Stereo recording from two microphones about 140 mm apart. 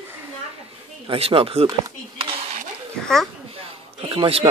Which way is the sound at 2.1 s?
40° right (ahead or behind).